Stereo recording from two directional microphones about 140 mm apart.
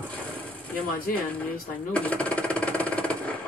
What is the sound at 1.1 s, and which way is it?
Speech, 85° left.